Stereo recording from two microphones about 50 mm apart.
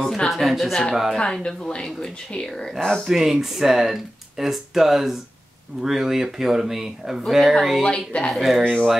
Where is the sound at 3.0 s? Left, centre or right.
Centre.